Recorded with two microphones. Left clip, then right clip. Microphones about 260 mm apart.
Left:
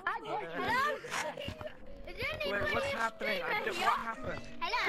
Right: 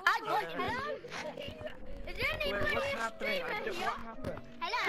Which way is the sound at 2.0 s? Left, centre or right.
Centre.